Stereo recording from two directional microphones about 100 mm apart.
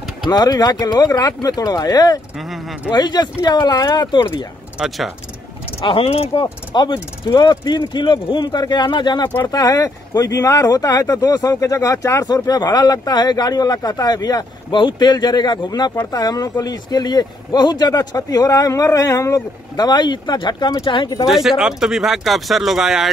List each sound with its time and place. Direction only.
0.2 s speech: 45° left (ahead or behind)
4.7 s speech: centre (ahead or behind)
5.8 s speech: 70° left (ahead or behind)
6.4 s speech: 45° left (ahead or behind)
21.3 s speech: 5° right (ahead or behind)